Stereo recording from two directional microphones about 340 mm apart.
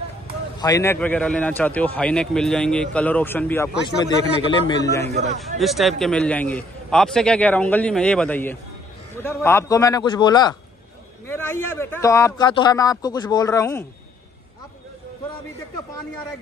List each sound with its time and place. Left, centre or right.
0.6 s a man's voice: centre
5.0 s a man's voice: centre
5.6 s a man's voice: centre